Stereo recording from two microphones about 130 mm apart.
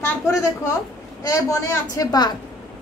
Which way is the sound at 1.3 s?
25° left (ahead or behind).